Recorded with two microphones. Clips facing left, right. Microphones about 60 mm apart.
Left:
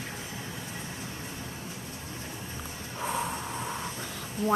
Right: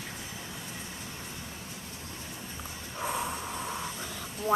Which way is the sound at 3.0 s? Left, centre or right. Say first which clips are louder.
Left 1 dB; centre.